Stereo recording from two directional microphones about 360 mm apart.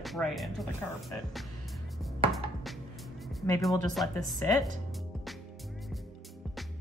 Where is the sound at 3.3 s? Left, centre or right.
Centre.